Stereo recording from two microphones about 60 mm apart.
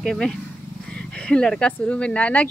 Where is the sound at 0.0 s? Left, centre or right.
Centre.